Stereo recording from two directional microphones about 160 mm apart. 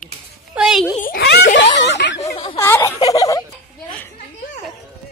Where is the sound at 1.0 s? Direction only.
70° left (ahead or behind); by 1.5 s 85° left.